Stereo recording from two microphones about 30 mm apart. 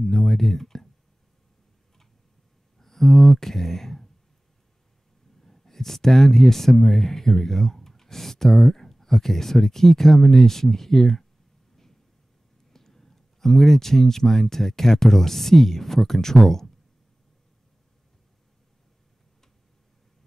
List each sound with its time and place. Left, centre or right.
0.0 s a sound: centre
2.8 s speech: centre
5.4 s speech: centre
12.7 s speech: centre